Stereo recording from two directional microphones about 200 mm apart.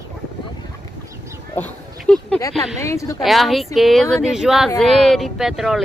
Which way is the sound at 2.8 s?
15° left (ahead or behind).